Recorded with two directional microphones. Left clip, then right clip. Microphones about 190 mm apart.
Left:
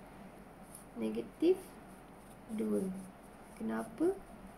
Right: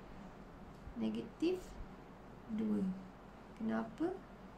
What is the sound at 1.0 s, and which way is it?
Speech, 60° right (ahead or behind).